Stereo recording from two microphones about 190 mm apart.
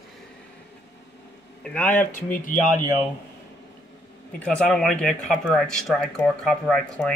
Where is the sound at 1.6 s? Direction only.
5° left (ahead or behind).